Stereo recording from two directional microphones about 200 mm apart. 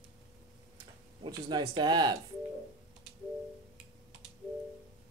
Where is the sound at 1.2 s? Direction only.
20° right (ahead or behind).